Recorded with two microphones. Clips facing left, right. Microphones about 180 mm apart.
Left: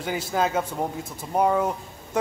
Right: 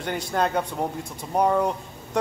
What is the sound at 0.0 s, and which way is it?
Speech, 5° left (ahead or behind).